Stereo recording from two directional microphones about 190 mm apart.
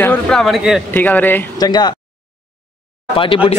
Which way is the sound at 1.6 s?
20° left (ahead or behind).